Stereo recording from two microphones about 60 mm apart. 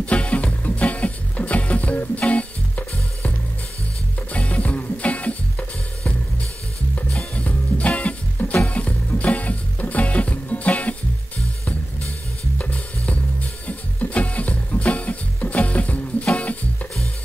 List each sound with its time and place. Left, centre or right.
0.0 s music: left
7.3 s music: left
12.5 s music: left